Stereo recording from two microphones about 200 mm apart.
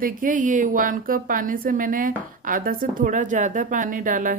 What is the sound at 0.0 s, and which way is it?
A woman's voice, 40° right (ahead or behind).